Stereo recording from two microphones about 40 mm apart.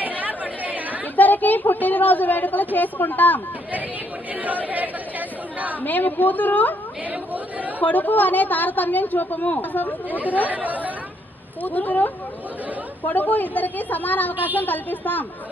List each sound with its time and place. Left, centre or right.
0.2 s chatter: right
1.1 s a sound: left
4.4 s speech: right
5.8 s a woman's voice: left
7.1 s chatter: right
7.8 s a woman's voice: left
10.0 s speech: right
11.6 s a woman's voice: left